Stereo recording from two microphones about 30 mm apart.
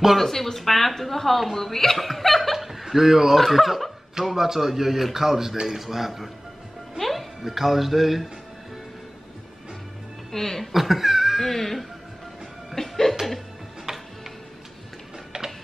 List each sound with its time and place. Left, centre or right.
0.2 s a woman's voice: centre
2.6 s chuckle: centre
3.3 s a man's voice: centre
7.0 s music: centre
7.4 s a man's voice: centre
10.3 s a woman's voice: centre
10.7 s cat: centre
11.4 s a woman's voice: centre
12.7 s music: centre
13.9 s music: centre
15.3 s music: right